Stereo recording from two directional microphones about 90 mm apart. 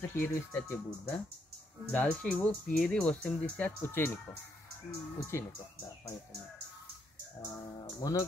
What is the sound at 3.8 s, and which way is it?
Speech, 25° left (ahead or behind).